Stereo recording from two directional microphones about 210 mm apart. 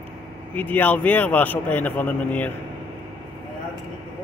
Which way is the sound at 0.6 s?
10° left (ahead or behind).